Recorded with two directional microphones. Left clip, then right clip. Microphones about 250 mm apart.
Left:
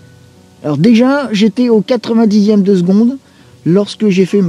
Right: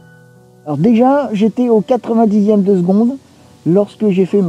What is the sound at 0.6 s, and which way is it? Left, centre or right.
Speech, left.